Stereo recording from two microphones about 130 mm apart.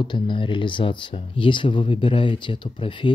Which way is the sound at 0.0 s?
40° left (ahead or behind).